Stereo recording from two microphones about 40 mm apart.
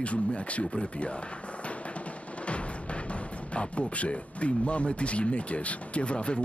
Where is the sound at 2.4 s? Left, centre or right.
Left.